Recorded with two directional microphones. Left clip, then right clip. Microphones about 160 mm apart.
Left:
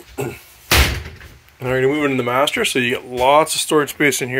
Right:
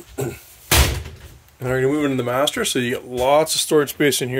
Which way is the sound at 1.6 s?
30° right (ahead or behind).